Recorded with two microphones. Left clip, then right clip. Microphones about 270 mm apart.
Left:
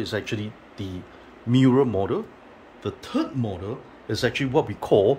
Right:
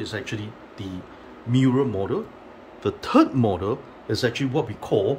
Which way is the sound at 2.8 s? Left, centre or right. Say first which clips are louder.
Right 8 dB; centre.